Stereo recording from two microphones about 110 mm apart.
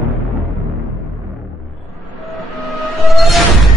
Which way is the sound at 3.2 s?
Centre (ahead or behind).